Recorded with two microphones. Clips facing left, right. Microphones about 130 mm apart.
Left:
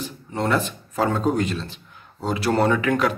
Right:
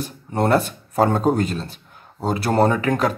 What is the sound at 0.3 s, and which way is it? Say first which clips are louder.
A man's voice: right 4 dB; 45° right (ahead or behind).